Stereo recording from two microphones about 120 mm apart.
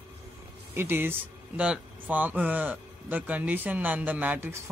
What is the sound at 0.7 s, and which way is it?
Speech, 20° right (ahead or behind).